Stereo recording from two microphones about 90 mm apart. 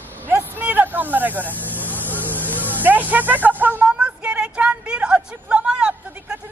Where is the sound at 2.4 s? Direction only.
20° right (ahead or behind).